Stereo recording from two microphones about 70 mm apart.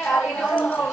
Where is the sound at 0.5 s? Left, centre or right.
Left.